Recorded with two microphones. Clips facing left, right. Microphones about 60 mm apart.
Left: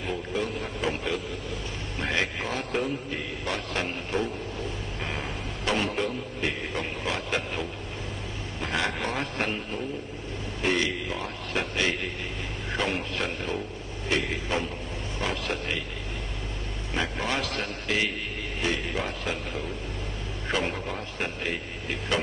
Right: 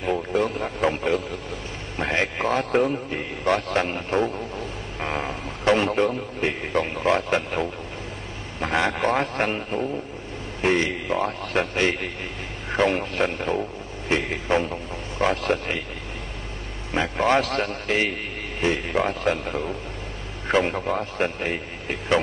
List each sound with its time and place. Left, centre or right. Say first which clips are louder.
0.0 s a man's voice: right 7 dB; right
17.2 s a man's voice: right 9 dB; right